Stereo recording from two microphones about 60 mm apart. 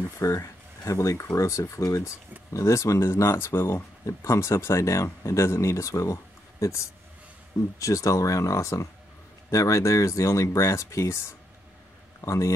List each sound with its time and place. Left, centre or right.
0.2 s speech: left
4.0 s speech: left
7.8 s speech: left